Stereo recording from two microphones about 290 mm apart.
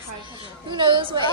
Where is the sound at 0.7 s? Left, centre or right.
Centre.